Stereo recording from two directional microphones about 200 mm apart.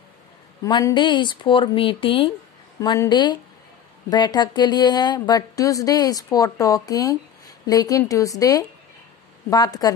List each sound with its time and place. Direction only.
0.7 s a woman's voice: 20° left (ahead or behind)